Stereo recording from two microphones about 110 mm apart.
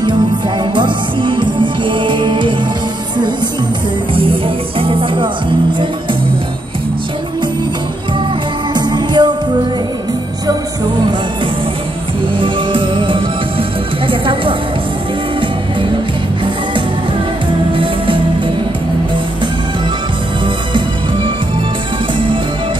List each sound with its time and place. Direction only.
0.7 s music: 45° right (ahead or behind)
4.1 s music: 55° right (ahead or behind)
8.7 s music: 40° right (ahead or behind)
12.4 s music: 50° right (ahead or behind)
17.7 s music: 50° right (ahead or behind)